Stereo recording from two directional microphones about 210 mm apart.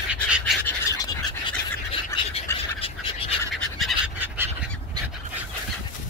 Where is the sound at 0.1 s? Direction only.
5° right (ahead or behind).